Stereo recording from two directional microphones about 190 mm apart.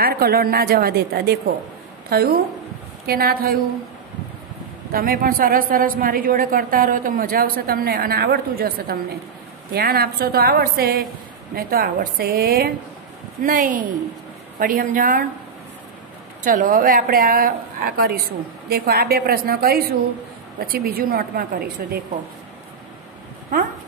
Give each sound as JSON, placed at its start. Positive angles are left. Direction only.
{"t": 0.0, "sound": "a woman's voice", "side_deg": -55}
{"t": 4.9, "sound": "a woman's voice", "side_deg": -50}
{"t": 16.4, "sound": "a woman's voice", "side_deg": -45}